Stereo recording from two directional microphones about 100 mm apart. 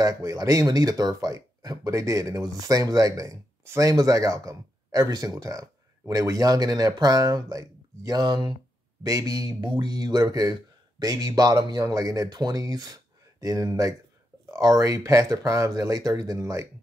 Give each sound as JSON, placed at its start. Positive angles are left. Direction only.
{"t": 0.0, "sound": "speech", "side_deg": -35}
{"t": 9.0, "sound": "speech", "side_deg": -35}